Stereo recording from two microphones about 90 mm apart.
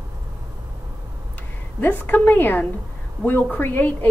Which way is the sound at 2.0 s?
20° left (ahead or behind).